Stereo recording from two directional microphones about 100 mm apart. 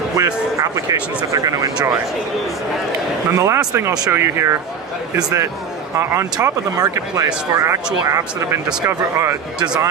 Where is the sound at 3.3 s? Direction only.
30° right (ahead or behind).